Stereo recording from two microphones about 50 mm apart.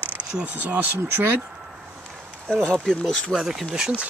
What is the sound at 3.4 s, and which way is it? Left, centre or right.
Speech, centre.